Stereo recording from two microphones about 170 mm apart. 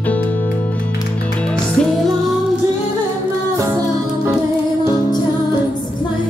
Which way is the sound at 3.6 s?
20° right (ahead or behind).